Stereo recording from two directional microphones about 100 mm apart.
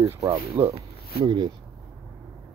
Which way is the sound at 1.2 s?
50° right (ahead or behind).